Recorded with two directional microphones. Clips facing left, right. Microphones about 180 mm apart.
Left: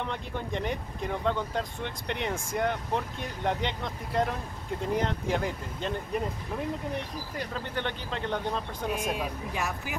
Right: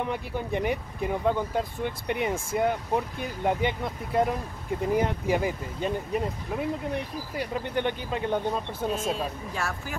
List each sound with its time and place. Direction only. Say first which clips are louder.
0.0 s speech: right 4 dB; 10° right (ahead or behind)
8.8 s speech: right 2 dB; 15° left (ahead or behind)